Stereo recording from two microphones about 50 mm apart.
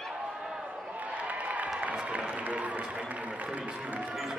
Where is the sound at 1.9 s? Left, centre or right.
Right.